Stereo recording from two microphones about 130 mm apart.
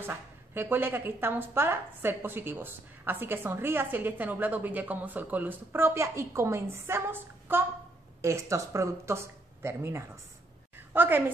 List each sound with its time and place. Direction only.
0.0 s speech: 15° right (ahead or behind)